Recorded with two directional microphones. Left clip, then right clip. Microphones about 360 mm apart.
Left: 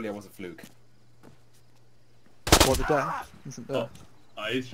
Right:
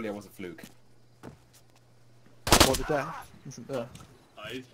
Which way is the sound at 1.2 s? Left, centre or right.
Centre.